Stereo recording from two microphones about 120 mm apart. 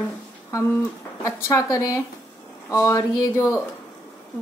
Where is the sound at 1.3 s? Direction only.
25° left (ahead or behind).